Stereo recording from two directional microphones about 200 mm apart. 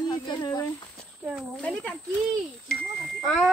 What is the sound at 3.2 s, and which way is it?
Speech, centre (ahead or behind).